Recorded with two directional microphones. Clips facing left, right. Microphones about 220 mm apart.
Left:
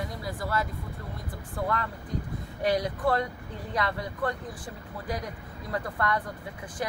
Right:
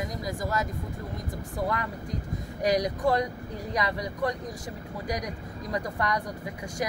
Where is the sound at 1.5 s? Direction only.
10° right (ahead or behind).